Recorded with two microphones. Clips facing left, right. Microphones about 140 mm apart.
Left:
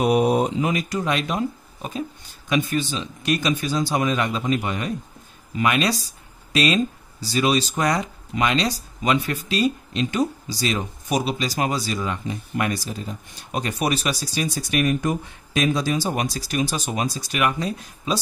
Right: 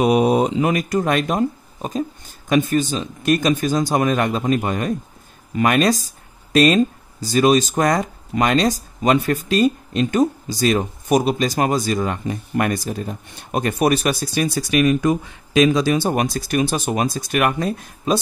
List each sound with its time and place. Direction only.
0.0 s mantra: 90° right
0.6 s speech: 50° right (ahead or behind)
14.7 s speech: 90° right; by 18.1 s 50° right (ahead or behind)